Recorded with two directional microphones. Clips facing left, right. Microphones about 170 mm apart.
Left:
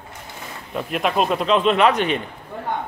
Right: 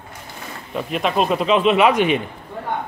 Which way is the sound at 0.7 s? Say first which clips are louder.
Right 1 dB; centre (ahead or behind).